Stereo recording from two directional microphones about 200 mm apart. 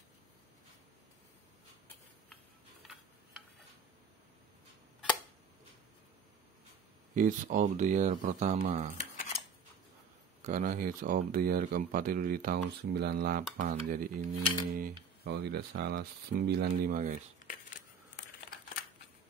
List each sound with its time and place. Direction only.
7.2 s speech: 40° right (ahead or behind)
8.9 s a sound: 35° left (ahead or behind)
10.4 s speech: 40° right (ahead or behind)